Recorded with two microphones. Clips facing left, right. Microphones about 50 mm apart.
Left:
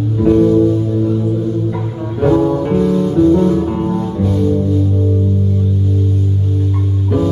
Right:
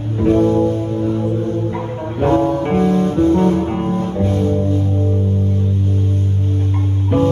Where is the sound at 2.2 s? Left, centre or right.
Right.